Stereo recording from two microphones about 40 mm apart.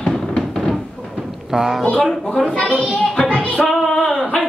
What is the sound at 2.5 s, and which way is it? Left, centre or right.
Speech, left.